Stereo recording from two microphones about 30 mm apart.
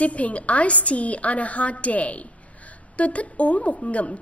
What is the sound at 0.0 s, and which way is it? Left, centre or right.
A woman's voice, left.